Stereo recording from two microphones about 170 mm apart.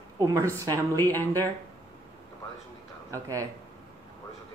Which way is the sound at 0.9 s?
10° left (ahead or behind).